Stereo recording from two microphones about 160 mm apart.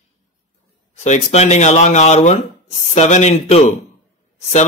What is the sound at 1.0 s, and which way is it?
Speech, 45° left (ahead or behind).